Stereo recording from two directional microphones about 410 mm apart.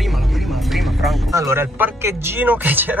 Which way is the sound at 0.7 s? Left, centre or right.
Centre.